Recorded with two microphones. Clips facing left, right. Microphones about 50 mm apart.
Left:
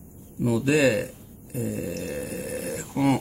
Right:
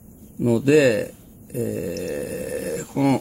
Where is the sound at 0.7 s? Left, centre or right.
Centre.